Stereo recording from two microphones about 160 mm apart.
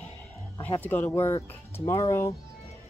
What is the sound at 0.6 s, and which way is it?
Speech, 10° left (ahead or behind).